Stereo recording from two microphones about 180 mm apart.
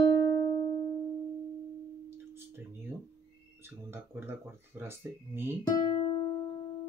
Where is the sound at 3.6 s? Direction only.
10° right (ahead or behind).